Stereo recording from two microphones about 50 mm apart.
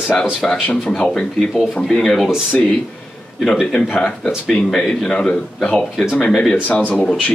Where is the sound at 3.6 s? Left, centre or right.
Centre.